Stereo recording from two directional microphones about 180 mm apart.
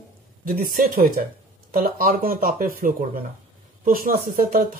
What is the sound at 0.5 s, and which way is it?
Speech, 50° right (ahead or behind).